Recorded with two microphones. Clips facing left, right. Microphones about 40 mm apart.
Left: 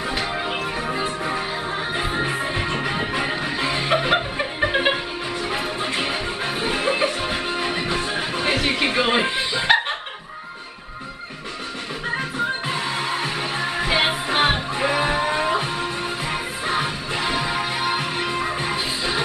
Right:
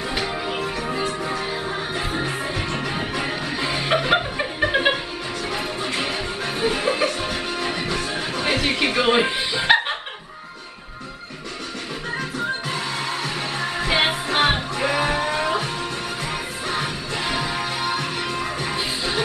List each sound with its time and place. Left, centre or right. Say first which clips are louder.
0.5 s music: even; centre
12.2 s music: even; centre
13.9 s music: even; centre
18.7 s music: left 1 dB; centre